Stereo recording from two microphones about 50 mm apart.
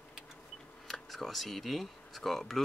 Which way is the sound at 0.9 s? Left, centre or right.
Centre.